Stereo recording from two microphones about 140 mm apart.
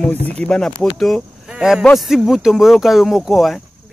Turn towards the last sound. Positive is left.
turn(degrees=0)  # may be behind; listen again after turning